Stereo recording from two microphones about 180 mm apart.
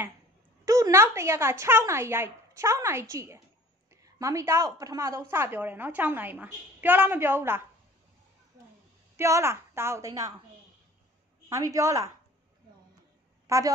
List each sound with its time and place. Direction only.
0.7 s a woman's voice: 20° right (ahead or behind)
9.1 s a woman's voice: 15° right (ahead or behind)
11.4 s a woman's voice: 20° right (ahead or behind)
13.5 s a woman's voice: 15° right (ahead or behind)